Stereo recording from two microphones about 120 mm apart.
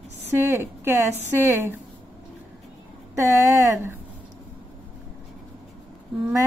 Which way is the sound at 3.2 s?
25° right (ahead or behind).